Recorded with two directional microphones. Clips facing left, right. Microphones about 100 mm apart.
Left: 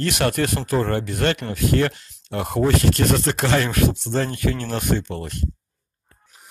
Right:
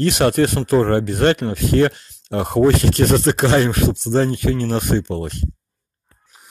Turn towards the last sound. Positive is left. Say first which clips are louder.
# right 4 dB
turn(degrees=-30)  # may be behind; listen again after turning